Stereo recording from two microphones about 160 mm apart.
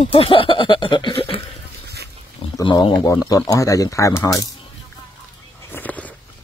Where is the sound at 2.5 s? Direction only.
30° left (ahead or behind).